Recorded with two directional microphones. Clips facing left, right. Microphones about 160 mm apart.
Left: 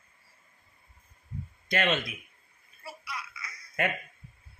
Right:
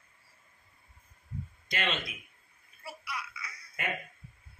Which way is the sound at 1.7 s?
50° left (ahead or behind).